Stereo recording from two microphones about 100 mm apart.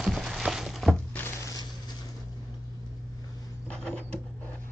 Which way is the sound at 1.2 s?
25° left (ahead or behind).